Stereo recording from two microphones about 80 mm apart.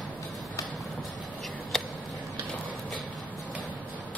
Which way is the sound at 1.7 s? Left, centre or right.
Centre.